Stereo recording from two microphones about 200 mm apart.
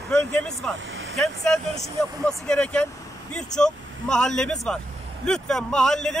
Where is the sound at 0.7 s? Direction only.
75° right (ahead or behind).